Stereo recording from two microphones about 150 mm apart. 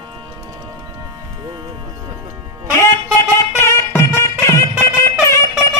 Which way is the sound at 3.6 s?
15° left (ahead or behind).